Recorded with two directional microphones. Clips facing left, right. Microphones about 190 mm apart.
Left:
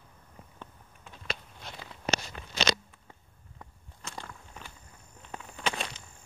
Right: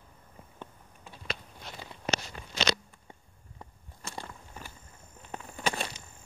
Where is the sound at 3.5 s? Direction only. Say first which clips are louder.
Right 1 dB; 10° right (ahead or behind).